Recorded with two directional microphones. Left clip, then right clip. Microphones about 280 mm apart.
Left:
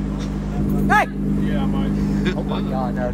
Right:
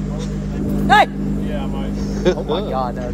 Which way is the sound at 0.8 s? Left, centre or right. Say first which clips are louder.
Right 5 dB; right.